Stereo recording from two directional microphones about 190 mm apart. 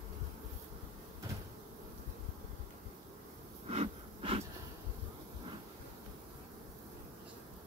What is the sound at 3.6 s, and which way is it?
Wheeze, 30° right (ahead or behind).